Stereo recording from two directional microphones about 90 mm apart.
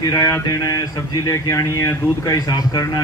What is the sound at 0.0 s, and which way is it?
Speech, 40° left (ahead or behind).